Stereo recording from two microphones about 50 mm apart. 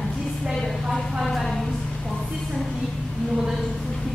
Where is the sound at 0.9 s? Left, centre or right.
Centre.